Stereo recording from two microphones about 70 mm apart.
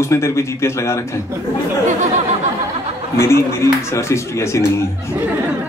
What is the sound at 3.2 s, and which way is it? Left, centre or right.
A man's voice, left.